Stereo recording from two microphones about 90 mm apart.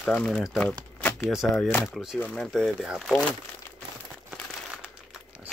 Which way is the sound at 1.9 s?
5° right (ahead or behind).